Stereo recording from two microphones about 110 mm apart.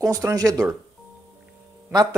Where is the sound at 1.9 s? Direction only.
35° right (ahead or behind).